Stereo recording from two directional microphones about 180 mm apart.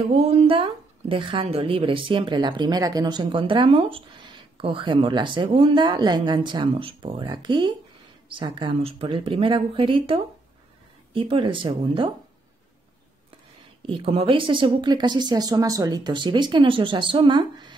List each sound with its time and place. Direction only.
0.1 s a woman's voice: 35° right (ahead or behind)
13.8 s a woman's voice: 30° right (ahead or behind)